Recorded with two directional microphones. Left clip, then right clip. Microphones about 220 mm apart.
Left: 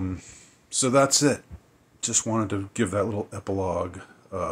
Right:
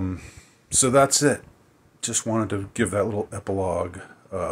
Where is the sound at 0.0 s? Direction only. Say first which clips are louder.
Right 2 dB; 15° right (ahead or behind).